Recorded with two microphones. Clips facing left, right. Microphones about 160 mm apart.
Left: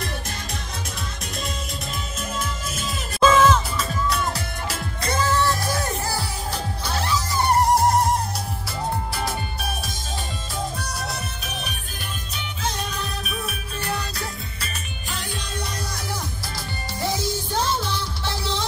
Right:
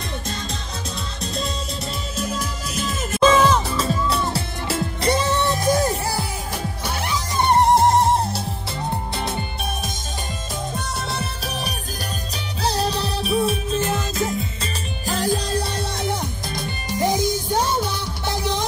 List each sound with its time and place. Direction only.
3.3 s music: 30° right (ahead or behind)
10.8 s music: 25° right (ahead or behind)
15.0 s music: 40° right (ahead or behind); by 18.7 s 15° right (ahead or behind)